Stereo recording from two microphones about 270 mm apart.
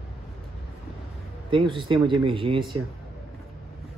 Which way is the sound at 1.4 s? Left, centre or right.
Centre.